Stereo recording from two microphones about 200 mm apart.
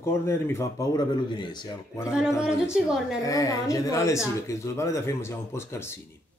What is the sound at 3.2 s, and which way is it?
A man's voice, 15° left (ahead or behind).